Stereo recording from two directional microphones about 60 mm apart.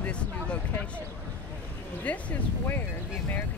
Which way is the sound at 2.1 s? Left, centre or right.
Left.